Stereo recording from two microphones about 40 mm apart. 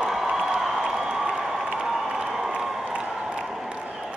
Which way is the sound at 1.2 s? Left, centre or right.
Centre.